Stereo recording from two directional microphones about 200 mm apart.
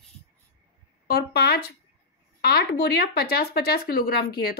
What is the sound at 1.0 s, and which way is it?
Speech, 50° left (ahead or behind).